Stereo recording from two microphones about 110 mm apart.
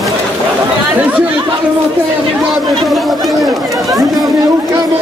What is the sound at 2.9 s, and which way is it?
Chatter, centre (ahead or behind).